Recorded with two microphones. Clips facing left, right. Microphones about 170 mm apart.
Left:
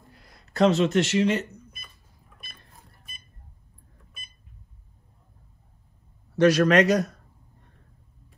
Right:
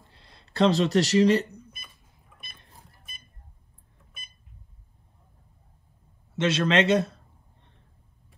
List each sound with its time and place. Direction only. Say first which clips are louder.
0.1 s speech: left 2 dB; 30° right (ahead or behind)
6.3 s speech: left 5 dB; 25° right (ahead or behind)